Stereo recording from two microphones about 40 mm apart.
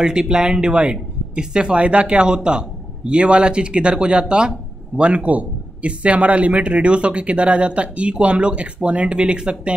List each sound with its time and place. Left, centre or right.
0.0 s speech: right